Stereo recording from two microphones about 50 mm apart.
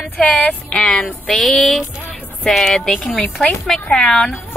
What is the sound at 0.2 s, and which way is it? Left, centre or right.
Speech, left.